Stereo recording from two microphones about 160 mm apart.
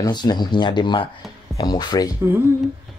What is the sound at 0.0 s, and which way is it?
Speech, 25° left (ahead or behind).